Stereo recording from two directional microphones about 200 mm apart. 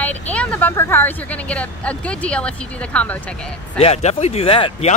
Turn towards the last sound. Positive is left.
turn(degrees=25)  # may be behind; listen again after turning